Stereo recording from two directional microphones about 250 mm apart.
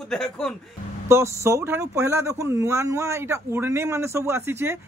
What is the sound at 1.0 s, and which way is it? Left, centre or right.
A man's voice, centre.